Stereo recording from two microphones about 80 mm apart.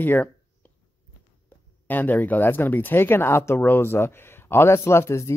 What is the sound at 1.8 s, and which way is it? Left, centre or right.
Speech, left.